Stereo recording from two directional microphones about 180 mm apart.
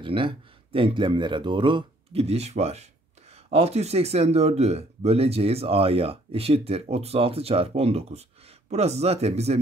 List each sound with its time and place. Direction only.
0.0 s speech: 30° right (ahead or behind)